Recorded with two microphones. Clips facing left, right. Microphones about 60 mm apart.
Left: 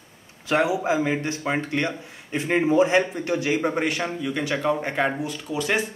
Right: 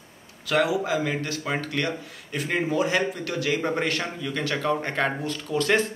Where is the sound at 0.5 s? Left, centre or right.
Left.